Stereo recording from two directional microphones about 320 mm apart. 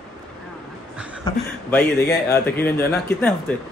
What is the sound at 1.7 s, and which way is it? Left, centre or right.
A woman's voice, centre.